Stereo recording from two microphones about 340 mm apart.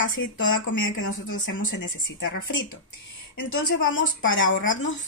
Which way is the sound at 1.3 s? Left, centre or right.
Left.